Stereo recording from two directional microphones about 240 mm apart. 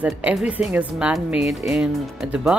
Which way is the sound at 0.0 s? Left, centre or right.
Centre.